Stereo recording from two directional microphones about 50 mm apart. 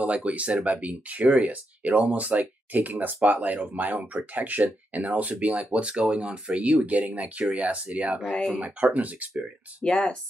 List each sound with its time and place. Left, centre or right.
0.0 s speech: right
9.8 s speech: centre